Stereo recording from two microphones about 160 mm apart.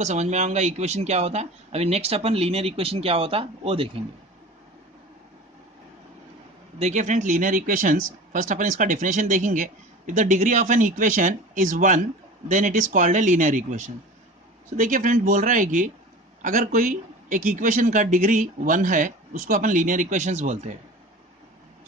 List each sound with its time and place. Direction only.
0.0 s speech: 45° right (ahead or behind)
6.8 s a man's voice: 50° right (ahead or behind)